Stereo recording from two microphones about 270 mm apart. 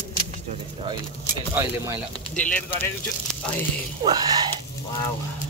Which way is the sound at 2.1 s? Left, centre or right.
Centre.